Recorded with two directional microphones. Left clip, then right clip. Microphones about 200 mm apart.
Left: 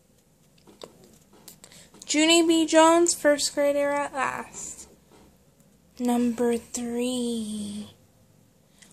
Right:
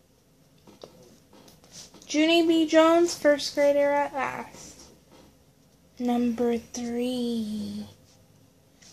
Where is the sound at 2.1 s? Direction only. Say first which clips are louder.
Left 1 dB; 15° left (ahead or behind).